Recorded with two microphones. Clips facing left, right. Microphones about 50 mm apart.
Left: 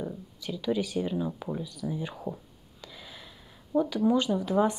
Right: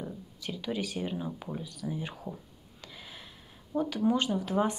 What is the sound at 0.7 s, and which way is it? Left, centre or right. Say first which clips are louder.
Speech: left 4 dB; right.